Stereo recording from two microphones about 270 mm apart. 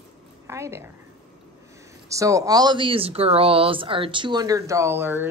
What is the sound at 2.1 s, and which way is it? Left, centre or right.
Speech, centre.